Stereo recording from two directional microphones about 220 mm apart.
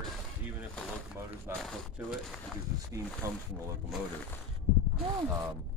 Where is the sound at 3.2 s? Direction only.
15° right (ahead or behind).